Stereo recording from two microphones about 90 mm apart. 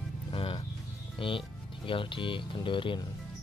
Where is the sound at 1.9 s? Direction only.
70° left (ahead or behind).